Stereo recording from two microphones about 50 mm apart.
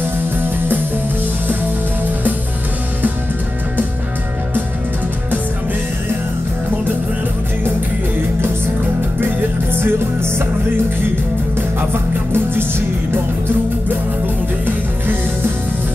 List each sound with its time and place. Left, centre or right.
9.2 s music: right
11.9 s music: right